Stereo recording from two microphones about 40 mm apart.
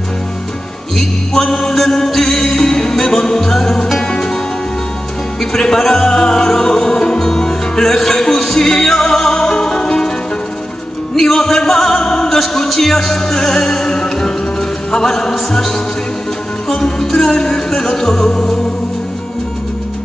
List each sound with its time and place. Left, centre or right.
0.9 s music: centre
5.4 s music: centre
11.1 s music: centre
12.0 s opera: centre
12.4 s music: centre